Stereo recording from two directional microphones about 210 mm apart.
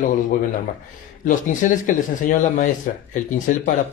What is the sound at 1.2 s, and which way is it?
Speech, 35° left (ahead or behind).